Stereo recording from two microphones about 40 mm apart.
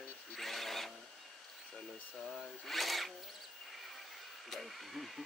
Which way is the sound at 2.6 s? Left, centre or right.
Centre.